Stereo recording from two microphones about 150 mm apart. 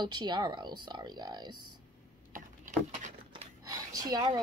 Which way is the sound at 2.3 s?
55° right (ahead or behind).